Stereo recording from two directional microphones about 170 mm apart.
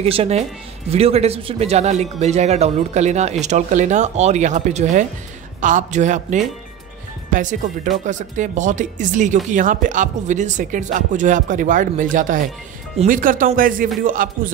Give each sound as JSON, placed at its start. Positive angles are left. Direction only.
{"t": 0.0, "sound": "speech", "side_deg": -35}